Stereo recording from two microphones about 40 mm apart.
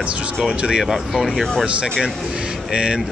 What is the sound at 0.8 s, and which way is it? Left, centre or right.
Speech, centre.